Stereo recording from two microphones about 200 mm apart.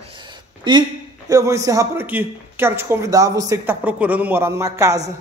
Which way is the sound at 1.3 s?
15° right (ahead or behind).